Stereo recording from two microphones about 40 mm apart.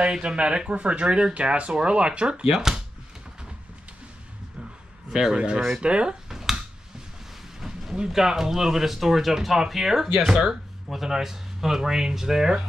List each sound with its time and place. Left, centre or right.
0.0 s speech: right
5.1 s speech: centre
5.8 s speech: right
6.2 s finger snapping: centre
7.9 s speech: centre